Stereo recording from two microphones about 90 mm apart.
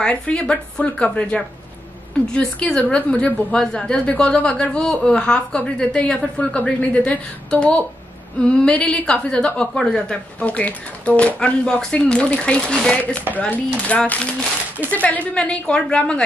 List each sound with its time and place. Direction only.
0.0 s a woman's voice: 10° left (ahead or behind)